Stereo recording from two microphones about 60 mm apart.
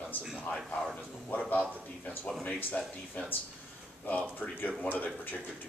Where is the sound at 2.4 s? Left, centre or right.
Left.